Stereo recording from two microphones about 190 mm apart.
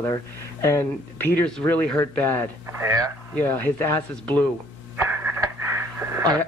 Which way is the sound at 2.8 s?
15° right (ahead or behind).